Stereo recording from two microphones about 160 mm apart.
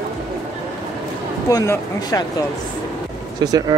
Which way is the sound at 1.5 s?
20° left (ahead or behind).